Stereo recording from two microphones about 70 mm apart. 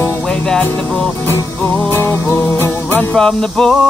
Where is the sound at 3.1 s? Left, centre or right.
Centre.